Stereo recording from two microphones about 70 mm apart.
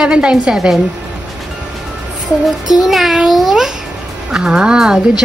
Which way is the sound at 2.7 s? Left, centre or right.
Centre.